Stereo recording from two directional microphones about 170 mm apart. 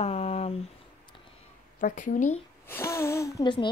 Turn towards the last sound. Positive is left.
turn(degrees=25)  # may be behind; listen again after turning